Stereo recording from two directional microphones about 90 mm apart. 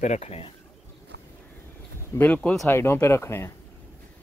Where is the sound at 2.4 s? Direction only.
10° left (ahead or behind).